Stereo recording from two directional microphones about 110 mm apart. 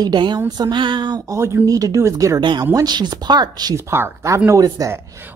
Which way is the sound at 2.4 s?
45° right (ahead or behind).